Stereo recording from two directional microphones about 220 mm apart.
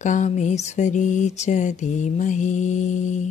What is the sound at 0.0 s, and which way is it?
Mantra, 35° left (ahead or behind).